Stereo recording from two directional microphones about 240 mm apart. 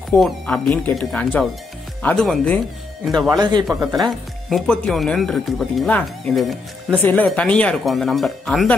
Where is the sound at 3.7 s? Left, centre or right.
Centre.